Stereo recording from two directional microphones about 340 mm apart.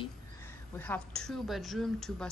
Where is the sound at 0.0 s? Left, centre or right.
Centre.